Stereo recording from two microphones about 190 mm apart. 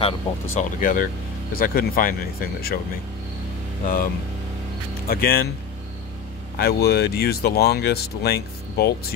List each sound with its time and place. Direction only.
0.6 s speech: 45° left (ahead or behind)
3.8 s speech: 50° left (ahead or behind)
6.6 s speech: 55° left (ahead or behind)